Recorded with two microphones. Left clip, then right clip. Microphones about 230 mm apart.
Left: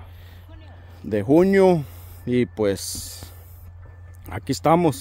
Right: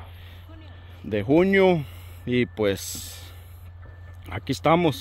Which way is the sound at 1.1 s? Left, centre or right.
Left.